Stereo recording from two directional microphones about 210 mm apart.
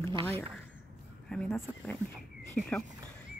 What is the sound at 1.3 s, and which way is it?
Speech, 5° left (ahead or behind).